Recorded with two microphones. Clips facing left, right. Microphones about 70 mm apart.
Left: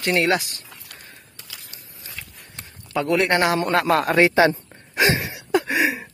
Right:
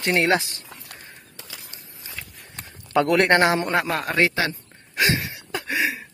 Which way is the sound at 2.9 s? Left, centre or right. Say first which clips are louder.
Right 2 dB; right.